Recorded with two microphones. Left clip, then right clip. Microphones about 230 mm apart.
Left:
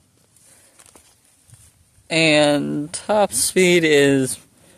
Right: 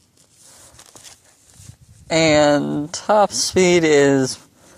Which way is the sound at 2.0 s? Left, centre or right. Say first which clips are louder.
Right 1 dB; centre.